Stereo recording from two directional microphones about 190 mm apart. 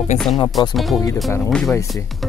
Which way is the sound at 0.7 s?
Centre (ahead or behind).